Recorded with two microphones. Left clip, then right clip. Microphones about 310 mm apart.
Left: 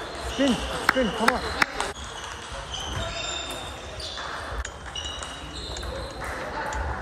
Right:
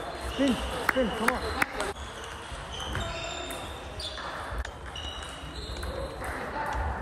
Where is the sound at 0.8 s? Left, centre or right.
Left.